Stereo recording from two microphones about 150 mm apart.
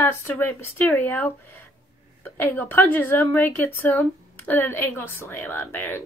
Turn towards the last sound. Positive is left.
turn(degrees=15)  # may be behind; listen again after turning